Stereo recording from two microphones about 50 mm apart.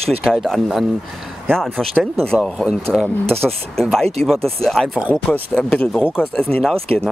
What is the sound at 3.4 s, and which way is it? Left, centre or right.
Speech, centre.